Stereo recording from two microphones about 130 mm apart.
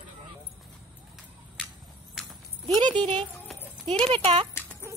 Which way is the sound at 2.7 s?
35° right (ahead or behind).